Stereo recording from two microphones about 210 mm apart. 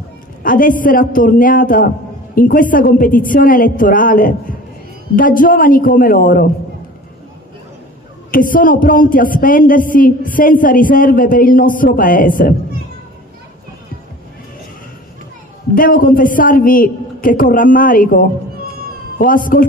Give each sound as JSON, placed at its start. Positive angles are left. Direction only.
{"t": 0.4, "sound": "speech", "side_deg": 40}
{"t": 8.3, "sound": "speech", "side_deg": 40}
{"t": 15.7, "sound": "speech", "side_deg": 40}